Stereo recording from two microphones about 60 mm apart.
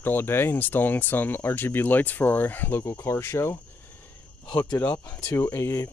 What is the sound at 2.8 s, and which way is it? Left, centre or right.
Speech, left.